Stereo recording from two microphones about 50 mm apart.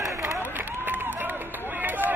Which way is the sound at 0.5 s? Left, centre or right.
Right.